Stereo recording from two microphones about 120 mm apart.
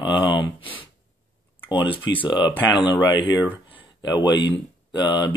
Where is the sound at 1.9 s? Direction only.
45° left (ahead or behind).